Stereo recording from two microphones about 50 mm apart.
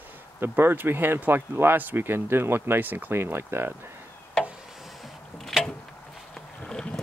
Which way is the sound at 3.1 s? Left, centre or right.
Right.